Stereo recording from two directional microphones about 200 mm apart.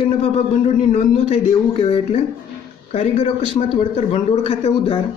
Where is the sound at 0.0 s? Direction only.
30° left (ahead or behind).